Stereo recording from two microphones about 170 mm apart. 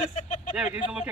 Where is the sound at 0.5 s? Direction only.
5° right (ahead or behind).